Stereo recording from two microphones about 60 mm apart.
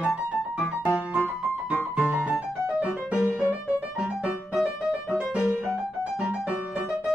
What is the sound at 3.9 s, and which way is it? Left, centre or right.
Music, centre.